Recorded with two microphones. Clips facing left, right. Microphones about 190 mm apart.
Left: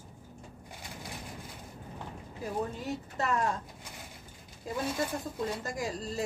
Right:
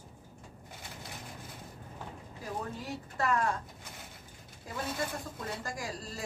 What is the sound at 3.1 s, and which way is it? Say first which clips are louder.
Speech: right 1 dB; 20° left (ahead or behind).